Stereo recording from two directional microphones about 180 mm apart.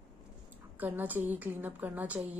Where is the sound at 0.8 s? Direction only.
10° right (ahead or behind).